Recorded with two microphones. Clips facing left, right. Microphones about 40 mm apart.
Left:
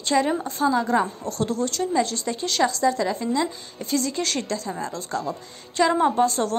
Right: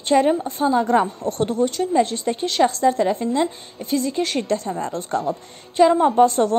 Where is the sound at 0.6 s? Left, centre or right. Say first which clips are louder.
Right 2 dB; right.